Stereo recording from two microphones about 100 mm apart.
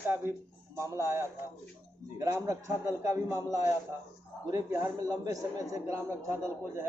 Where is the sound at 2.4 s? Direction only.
30° right (ahead or behind).